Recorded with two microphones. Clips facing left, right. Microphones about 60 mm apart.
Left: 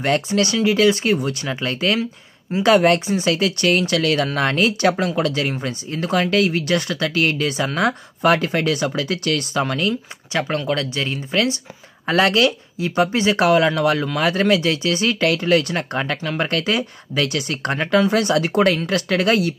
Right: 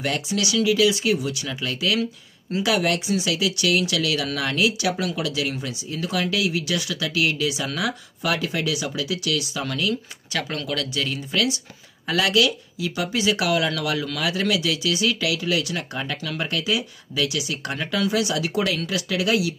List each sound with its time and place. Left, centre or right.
0.0 s speech: left
10.3 s speech: left